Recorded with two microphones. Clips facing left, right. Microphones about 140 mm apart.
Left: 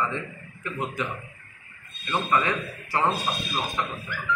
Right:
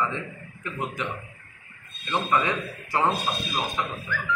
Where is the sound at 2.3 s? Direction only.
15° right (ahead or behind).